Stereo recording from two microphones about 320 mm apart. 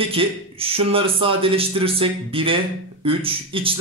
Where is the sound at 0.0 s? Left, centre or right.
Centre.